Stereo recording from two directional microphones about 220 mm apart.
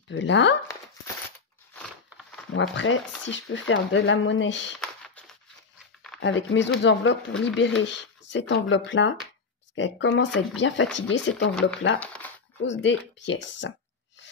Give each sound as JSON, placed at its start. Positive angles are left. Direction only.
{"t": 0.1, "sound": "speech", "side_deg": 55}
{"t": 2.0, "sound": "a sound", "side_deg": -5}
{"t": 2.7, "sound": "speech", "side_deg": 55}
{"t": 4.7, "sound": "a sound", "side_deg": 5}
{"t": 6.1, "sound": "speech", "side_deg": 55}
{"t": 12.0, "sound": "crumpling", "side_deg": 5}
{"t": 12.6, "sound": "a woman's voice", "side_deg": 55}